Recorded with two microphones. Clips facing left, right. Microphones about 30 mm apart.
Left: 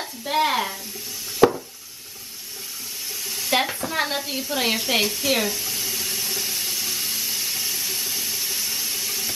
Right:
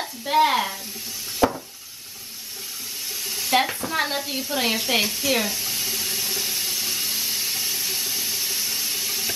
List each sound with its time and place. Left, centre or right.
0.0 s sizzle: centre
1.4 s a sound: left
3.3 s sizzle: centre